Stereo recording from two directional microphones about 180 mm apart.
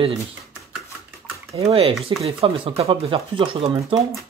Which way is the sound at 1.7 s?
30° right (ahead or behind).